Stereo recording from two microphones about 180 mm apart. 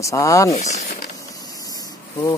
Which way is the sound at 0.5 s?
40° left (ahead or behind).